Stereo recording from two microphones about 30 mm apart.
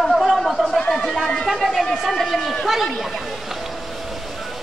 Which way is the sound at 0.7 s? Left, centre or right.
Left.